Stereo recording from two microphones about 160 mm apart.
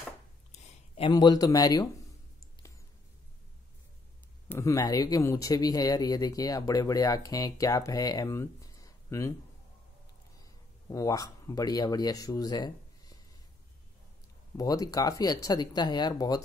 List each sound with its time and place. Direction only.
0.5 s a sound: 45° left (ahead or behind)
1.1 s speech: 25° left (ahead or behind)
4.5 s speech: 20° left (ahead or behind)
10.4 s a man's voice: 20° left (ahead or behind)
14.6 s speech: 20° left (ahead or behind)